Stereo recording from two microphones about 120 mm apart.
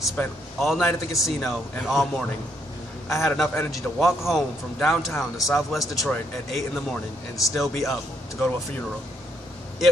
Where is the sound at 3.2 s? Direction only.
5° left (ahead or behind).